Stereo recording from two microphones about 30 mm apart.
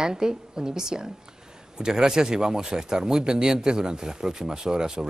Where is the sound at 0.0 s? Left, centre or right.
Right.